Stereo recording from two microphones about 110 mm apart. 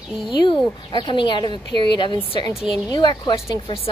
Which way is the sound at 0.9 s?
45° left (ahead or behind).